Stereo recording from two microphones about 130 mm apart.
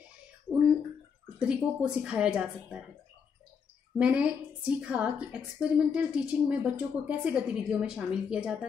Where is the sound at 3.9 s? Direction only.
10° right (ahead or behind).